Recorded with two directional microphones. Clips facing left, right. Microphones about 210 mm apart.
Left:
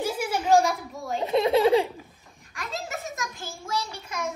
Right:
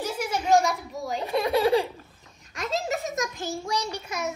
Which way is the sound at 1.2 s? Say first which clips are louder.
Left 3 dB; 20° left (ahead or behind).